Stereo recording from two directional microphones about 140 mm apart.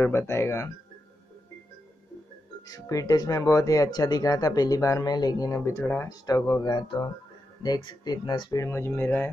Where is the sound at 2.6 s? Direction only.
25° left (ahead or behind).